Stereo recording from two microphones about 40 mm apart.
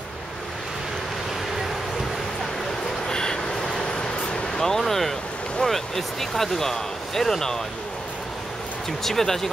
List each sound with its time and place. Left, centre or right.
3.1 s vehicle: centre
4.6 s speech: centre
9.0 s speech: centre